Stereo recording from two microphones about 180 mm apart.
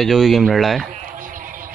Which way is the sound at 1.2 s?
50° right (ahead or behind).